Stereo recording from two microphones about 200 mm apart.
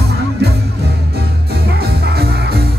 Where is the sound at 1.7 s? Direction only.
50° right (ahead or behind).